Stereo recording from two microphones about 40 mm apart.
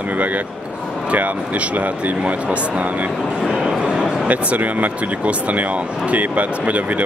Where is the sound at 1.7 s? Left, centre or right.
Right.